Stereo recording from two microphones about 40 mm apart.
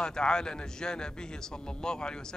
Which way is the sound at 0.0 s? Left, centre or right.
Centre.